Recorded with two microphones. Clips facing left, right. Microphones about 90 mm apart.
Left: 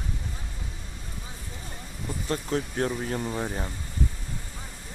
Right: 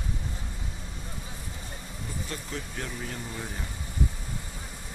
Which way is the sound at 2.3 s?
40° left (ahead or behind).